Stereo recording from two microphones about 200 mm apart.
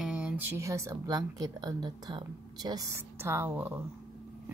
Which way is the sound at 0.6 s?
15° right (ahead or behind).